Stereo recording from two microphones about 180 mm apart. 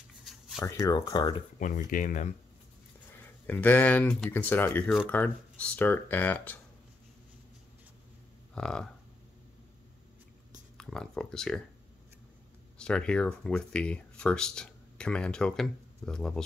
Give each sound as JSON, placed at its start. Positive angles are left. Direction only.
{"t": 0.2, "sound": "writing", "side_deg": 0}
{"t": 0.7, "sound": "speech", "side_deg": 20}
{"t": 1.6, "sound": "speech", "side_deg": 50}
{"t": 3.1, "sound": "speech", "side_deg": 10}
{"t": 8.5, "sound": "speech", "side_deg": 5}
{"t": 10.8, "sound": "speech", "side_deg": 5}
{"t": 12.7, "sound": "speech", "side_deg": 5}